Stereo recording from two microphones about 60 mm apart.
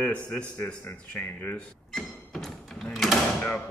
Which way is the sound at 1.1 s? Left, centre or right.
Left.